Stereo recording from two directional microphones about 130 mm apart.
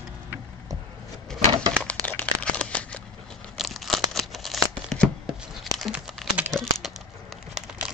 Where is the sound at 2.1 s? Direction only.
10° left (ahead or behind).